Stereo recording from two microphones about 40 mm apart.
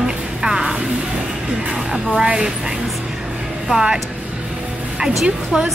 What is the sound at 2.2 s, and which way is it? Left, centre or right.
Speech, right.